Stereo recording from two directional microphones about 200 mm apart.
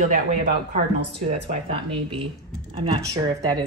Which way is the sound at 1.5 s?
30° right (ahead or behind).